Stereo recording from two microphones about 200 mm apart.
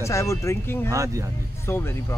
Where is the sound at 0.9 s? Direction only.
15° right (ahead or behind).